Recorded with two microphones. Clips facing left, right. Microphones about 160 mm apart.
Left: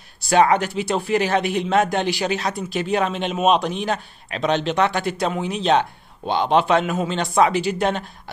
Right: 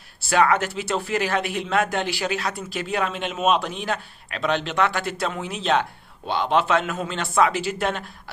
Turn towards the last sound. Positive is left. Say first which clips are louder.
# left 4 dB
turn(degrees=20)  # may be behind; listen again after turning